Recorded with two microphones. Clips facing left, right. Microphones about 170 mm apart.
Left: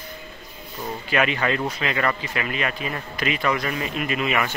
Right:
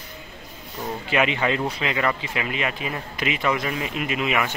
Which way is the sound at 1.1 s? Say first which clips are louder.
Even; 20° right (ahead or behind).